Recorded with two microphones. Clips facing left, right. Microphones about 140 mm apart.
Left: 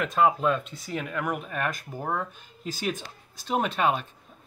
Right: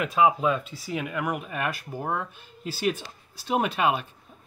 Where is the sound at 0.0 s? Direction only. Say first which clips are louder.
Right 1 dB; 5° right (ahead or behind).